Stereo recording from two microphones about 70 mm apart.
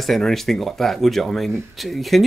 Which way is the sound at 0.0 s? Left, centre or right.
Centre.